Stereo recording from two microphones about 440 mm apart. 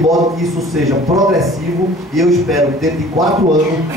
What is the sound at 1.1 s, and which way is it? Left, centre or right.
A man's voice, centre.